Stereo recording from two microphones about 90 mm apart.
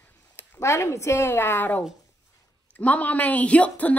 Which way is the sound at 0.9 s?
30° left (ahead or behind).